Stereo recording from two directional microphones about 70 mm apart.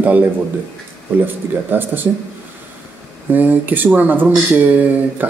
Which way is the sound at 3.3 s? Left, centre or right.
Right.